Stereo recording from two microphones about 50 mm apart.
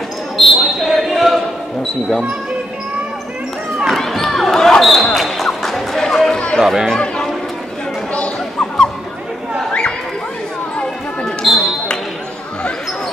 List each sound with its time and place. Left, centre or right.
0.4 s basketball bounce: centre
1.8 s speech: centre
3.8 s basketball bounce: centre
5.9 s a sound: centre
6.6 s speech: centre
8.1 s a sound: left
11.2 s basketball bounce: centre